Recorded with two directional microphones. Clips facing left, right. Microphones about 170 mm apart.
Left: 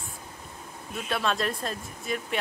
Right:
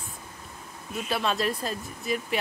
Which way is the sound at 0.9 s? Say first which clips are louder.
Right 1 dB; centre (ahead or behind).